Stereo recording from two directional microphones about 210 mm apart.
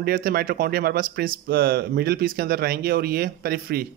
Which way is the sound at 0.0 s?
45° right (ahead or behind).